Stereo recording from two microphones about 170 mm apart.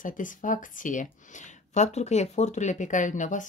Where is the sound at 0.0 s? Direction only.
50° left (ahead or behind).